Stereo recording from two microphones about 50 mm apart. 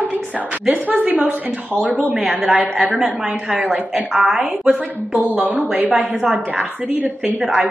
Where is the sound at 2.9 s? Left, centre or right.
Centre.